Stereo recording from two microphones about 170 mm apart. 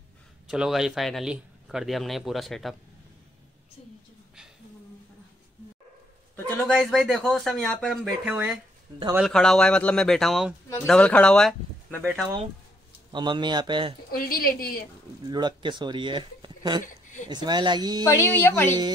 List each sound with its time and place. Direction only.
0.5 s speech: 5° right (ahead or behind)
6.7 s speech: centre (ahead or behind)
13.1 s a man's voice: 25° right (ahead or behind)
14.1 s a woman's voice: 60° left (ahead or behind)
15.2 s speech: 25° right (ahead or behind)
16.8 s speech: 50° left (ahead or behind)
17.3 s a man's voice: 25° right (ahead or behind)
18.0 s speech: 15° left (ahead or behind)